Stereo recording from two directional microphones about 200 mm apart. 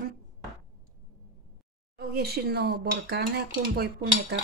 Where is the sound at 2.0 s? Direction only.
50° right (ahead or behind).